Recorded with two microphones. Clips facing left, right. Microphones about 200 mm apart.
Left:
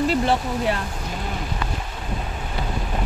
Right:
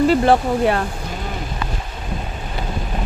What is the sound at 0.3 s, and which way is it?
Speech, 60° right (ahead or behind).